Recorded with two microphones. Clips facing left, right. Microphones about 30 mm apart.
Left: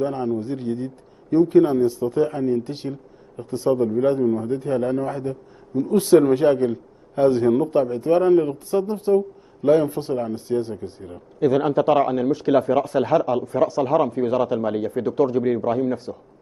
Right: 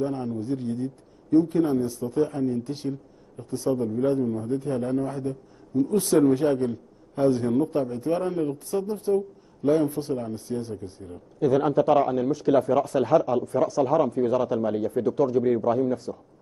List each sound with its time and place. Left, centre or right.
0.0 s a man's voice: left